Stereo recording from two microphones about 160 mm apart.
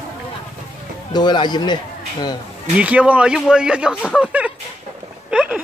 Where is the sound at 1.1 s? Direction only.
25° left (ahead or behind).